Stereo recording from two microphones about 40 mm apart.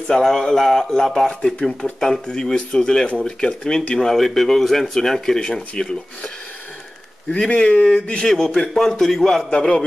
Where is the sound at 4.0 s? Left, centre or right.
Centre.